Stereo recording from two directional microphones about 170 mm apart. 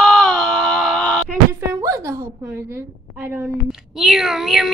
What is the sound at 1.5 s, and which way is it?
A woman's voice, 15° right (ahead or behind).